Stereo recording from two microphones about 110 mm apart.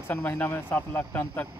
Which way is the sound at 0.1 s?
15° left (ahead or behind).